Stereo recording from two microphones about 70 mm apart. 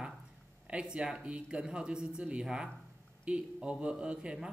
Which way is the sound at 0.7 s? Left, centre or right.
Centre.